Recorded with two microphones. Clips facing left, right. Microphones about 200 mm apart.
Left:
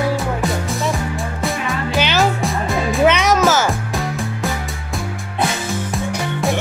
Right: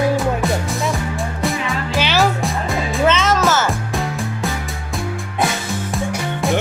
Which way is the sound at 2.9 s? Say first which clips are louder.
Left 2 dB; 15° left (ahead or behind).